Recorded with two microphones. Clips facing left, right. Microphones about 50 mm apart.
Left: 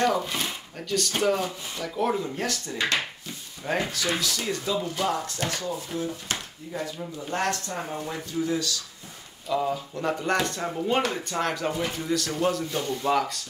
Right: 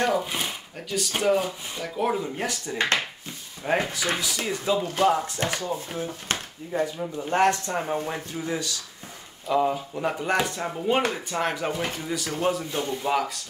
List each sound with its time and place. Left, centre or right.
0.0 s speech: centre
9.9 s speech: centre